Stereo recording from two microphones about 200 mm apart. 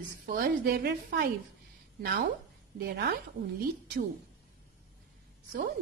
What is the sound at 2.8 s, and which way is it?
Speech, 55° right (ahead or behind).